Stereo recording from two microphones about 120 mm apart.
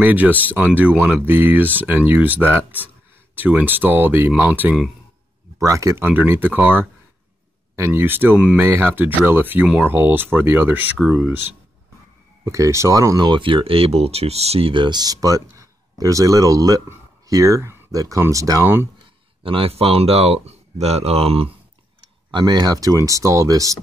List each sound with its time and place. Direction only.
0.0 s speech: 15° right (ahead or behind)
5.6 s speech: 25° right (ahead or behind)
7.7 s speech: 20° right (ahead or behind)
12.4 s speech: 25° right (ahead or behind)
19.4 s speech: 50° right (ahead or behind)
22.3 s speech: 35° right (ahead or behind)